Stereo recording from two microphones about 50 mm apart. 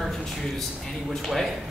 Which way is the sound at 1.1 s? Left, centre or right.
Centre.